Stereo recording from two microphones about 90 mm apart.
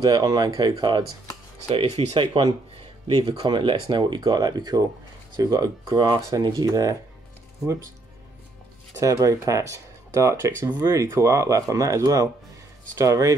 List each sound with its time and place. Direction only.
0.0 s speech: 45° right (ahead or behind)
1.7 s speech: 70° right (ahead or behind); by 5.9 s 40° right (ahead or behind)
5.9 s speech: 55° right (ahead or behind)
9.0 s speech: 40° right (ahead or behind)